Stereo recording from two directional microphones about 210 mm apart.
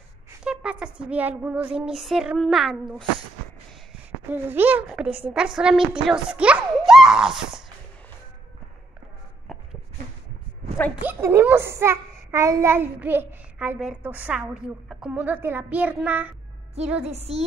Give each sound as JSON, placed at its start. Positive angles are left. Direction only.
{"t": 0.4, "sound": "speech", "side_deg": -5}
{"t": 4.3, "sound": "a child's voice", "side_deg": -10}
{"t": 9.5, "sound": "a sound", "side_deg": 0}
{"t": 11.0, "sound": "a child's voice", "side_deg": -10}
{"t": 17.0, "sound": "a woman's voice", "side_deg": -30}